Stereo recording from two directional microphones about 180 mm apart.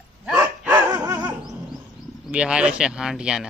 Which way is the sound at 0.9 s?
20° right (ahead or behind).